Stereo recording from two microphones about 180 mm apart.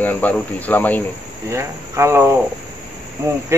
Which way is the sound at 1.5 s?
15° right (ahead or behind).